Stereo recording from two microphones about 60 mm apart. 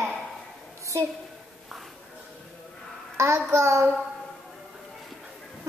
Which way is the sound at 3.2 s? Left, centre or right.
Right.